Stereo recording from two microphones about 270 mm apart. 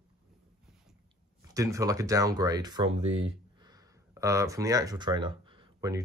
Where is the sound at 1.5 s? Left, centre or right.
Centre.